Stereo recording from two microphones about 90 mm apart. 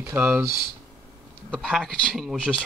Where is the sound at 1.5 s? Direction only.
5° left (ahead or behind).